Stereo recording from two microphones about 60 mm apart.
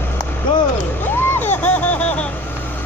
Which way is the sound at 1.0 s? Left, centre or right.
Left.